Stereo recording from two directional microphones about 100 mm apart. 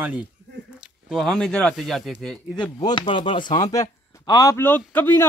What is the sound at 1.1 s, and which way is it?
Speech, 5° left (ahead or behind).